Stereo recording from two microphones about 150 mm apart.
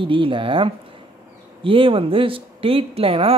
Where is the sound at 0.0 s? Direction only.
35° right (ahead or behind).